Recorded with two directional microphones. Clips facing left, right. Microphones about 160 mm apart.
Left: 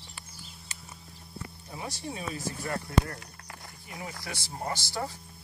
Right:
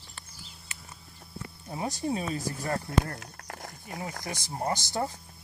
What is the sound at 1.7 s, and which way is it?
Speech, 40° right (ahead or behind).